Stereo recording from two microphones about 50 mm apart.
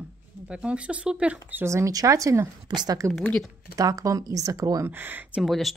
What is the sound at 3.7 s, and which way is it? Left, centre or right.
Speech, right.